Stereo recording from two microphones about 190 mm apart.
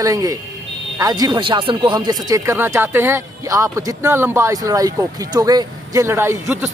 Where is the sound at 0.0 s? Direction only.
20° right (ahead or behind).